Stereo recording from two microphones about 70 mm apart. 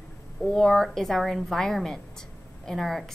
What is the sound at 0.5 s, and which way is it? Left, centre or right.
A woman's voice, centre.